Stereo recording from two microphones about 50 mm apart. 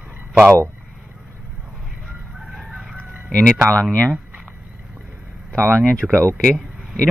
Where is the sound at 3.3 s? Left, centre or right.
Left.